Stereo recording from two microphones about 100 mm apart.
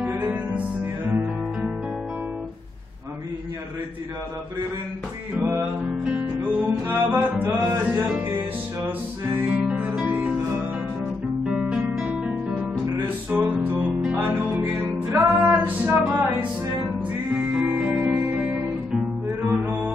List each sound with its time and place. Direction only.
0.0 s music: 20° right (ahead or behind)
6.0 s music: 15° right (ahead or behind)
11.8 s music: 15° right (ahead or behind)